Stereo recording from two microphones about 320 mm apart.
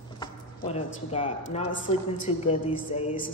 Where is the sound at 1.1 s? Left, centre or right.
Centre.